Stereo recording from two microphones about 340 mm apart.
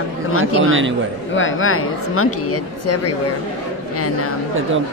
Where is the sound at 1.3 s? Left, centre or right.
Left.